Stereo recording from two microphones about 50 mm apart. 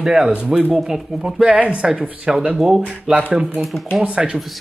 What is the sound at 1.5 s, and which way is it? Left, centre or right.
Speech, right.